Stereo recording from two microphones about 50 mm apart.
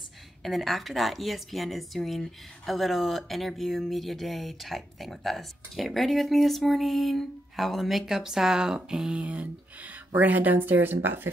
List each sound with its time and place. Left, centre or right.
0.4 s speech: centre
9.2 s speech: right
10.1 s speech: right